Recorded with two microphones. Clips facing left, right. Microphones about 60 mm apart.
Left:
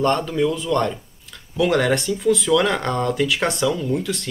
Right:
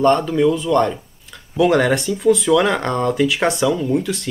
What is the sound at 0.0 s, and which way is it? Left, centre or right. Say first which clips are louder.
Speech: right 5 dB; centre.